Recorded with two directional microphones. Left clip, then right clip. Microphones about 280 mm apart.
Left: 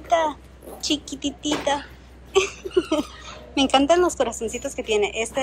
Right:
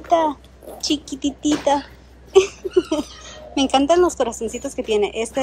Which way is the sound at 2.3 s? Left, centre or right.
Centre.